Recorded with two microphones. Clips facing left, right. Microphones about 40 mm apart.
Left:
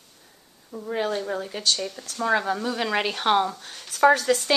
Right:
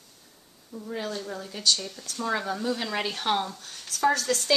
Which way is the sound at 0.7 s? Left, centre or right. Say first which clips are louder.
Left 6 dB; left.